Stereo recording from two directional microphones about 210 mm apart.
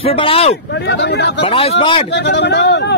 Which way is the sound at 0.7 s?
55° left (ahead or behind).